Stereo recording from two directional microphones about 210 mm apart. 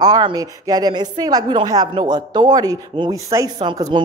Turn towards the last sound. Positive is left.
turn(degrees=-20)  # may be behind; listen again after turning